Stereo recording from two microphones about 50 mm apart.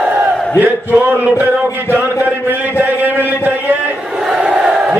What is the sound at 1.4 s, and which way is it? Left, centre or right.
Music, right.